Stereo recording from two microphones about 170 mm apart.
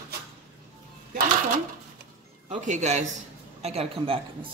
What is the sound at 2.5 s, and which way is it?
A man's voice, 45° right (ahead or behind).